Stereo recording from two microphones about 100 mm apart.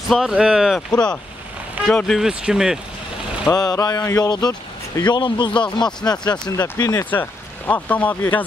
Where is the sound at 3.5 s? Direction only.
40° left (ahead or behind).